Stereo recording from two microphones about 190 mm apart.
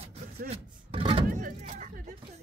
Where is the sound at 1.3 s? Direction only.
40° right (ahead or behind).